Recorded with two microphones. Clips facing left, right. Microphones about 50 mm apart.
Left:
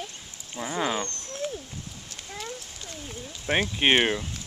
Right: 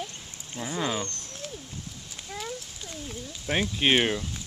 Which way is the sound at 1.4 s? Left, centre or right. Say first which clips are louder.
Left 8 dB; centre.